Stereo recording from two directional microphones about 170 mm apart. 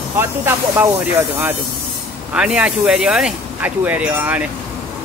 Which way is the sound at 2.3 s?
5° right (ahead or behind).